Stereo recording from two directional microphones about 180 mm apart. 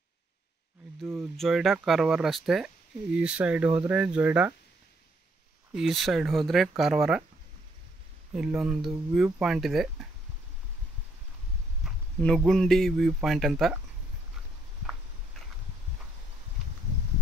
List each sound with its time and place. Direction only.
1.1 s speech: centre (ahead or behind)
5.8 s speech: centre (ahead or behind)
8.4 s speech: 5° right (ahead or behind)
11.8 s a sound: 5° right (ahead or behind)
12.4 s speech: centre (ahead or behind)